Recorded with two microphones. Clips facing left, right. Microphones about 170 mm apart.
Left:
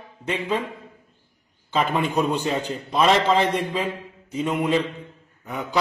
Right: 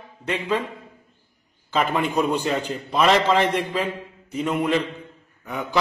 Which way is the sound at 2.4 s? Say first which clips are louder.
Right 1 dB; 10° left (ahead or behind).